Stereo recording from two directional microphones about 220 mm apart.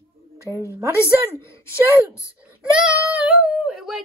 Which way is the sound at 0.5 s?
15° right (ahead or behind).